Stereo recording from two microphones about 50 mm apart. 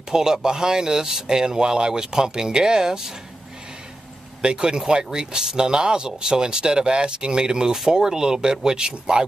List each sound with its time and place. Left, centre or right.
0.1 s speech: centre
4.4 s speech: centre